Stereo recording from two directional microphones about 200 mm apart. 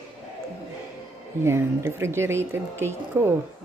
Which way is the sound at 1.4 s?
15° right (ahead or behind).